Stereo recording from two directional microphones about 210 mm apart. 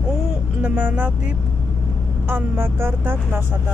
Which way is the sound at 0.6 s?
5° right (ahead or behind).